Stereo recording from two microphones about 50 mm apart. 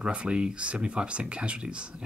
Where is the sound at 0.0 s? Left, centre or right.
Right.